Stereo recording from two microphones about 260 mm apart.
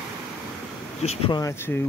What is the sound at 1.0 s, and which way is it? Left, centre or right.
Speech, centre.